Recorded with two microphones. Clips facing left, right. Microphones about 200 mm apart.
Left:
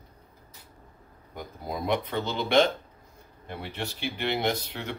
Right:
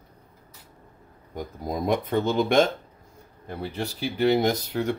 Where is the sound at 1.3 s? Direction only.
40° right (ahead or behind).